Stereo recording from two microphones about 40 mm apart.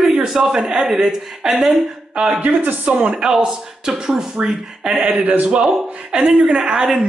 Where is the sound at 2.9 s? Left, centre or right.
Right.